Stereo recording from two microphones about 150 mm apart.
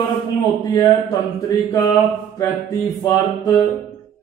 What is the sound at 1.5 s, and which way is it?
Music, 25° left (ahead or behind).